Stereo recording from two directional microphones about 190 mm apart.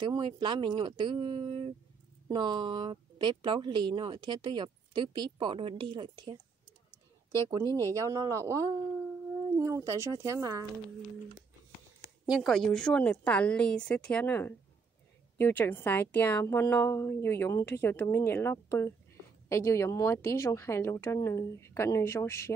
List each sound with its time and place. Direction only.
0.0 s speech: 25° right (ahead or behind)
7.9 s speech: 15° right (ahead or behind)
12.3 s a woman's voice: centre (ahead or behind)